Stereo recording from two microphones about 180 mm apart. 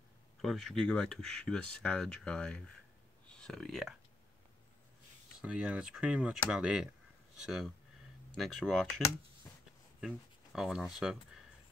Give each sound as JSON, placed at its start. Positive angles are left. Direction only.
{"t": 0.4, "sound": "speech", "side_deg": 0}
{"t": 5.4, "sound": "speech", "side_deg": -5}